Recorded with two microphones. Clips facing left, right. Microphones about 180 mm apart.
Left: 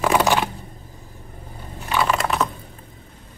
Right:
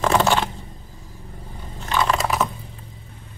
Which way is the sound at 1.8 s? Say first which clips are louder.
Even; 5° left (ahead or behind).